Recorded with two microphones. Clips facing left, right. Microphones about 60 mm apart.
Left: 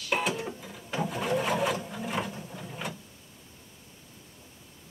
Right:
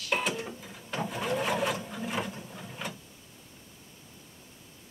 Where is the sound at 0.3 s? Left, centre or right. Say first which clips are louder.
Left 2 dB; centre.